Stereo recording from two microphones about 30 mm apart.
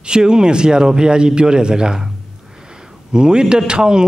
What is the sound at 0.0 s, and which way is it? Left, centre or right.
A man's voice, right.